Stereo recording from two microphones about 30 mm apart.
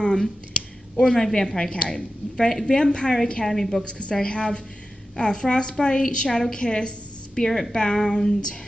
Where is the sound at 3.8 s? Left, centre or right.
Left.